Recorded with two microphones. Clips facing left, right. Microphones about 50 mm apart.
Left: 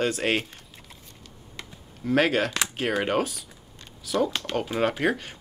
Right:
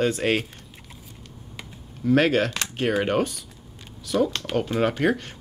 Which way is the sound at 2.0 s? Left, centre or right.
Centre.